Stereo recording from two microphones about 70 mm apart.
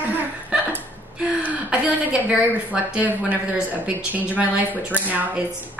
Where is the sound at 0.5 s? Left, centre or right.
Centre.